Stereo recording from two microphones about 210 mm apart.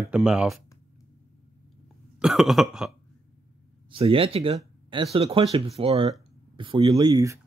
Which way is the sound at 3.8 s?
25° right (ahead or behind).